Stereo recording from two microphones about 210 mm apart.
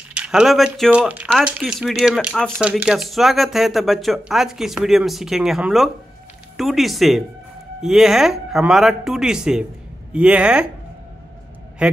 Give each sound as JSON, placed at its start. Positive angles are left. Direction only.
{"t": 0.1, "sound": "speech", "side_deg": -5}
{"t": 11.8, "sound": "a man's voice", "side_deg": -5}